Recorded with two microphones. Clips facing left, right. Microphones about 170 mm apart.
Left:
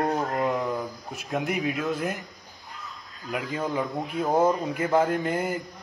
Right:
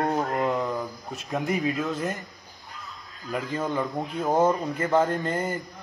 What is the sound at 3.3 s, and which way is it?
Speech, 5° left (ahead or behind).